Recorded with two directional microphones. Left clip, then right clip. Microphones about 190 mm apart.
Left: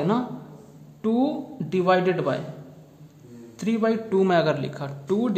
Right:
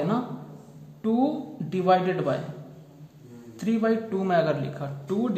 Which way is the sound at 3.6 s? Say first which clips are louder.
Left 1 dB; 35° left (ahead or behind).